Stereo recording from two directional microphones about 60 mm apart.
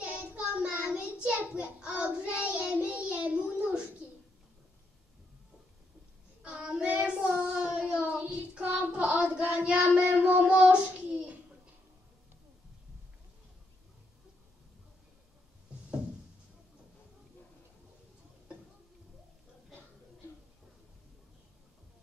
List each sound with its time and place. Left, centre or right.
0.6 s child singing: right
6.4 s child singing: centre
7.6 s a sound: centre
8.1 s child singing: right